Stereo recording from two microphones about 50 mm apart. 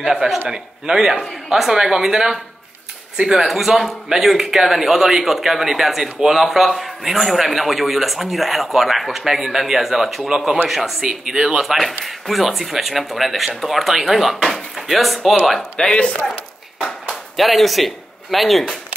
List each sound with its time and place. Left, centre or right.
0.0 s a man's voice: centre
15.7 s speech: centre
16.8 s speech: centre